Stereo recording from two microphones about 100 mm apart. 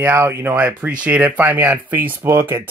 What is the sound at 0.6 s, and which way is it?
Speech, 15° right (ahead or behind).